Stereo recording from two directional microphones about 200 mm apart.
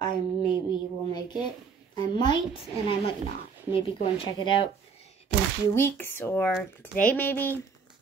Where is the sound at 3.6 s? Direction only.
25° left (ahead or behind).